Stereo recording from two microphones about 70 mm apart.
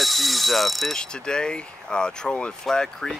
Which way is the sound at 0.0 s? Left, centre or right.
Centre.